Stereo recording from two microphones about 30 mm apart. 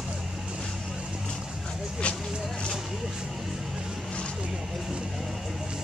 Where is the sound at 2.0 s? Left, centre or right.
Left.